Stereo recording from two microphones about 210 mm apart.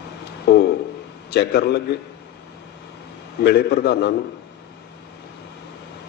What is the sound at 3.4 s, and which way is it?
Speech, 50° left (ahead or behind).